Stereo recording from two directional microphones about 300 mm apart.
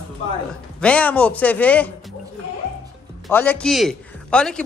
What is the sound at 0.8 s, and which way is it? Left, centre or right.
A man's voice, centre.